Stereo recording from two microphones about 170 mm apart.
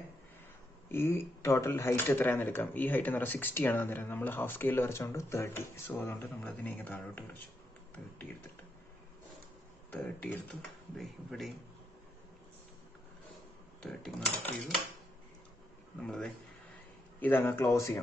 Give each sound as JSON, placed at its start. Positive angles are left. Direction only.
{"t": 0.9, "sound": "speech", "side_deg": 15}
{"t": 9.8, "sound": "speech", "side_deg": 10}
{"t": 13.8, "sound": "speech", "side_deg": 0}
{"t": 16.0, "sound": "speech", "side_deg": 5}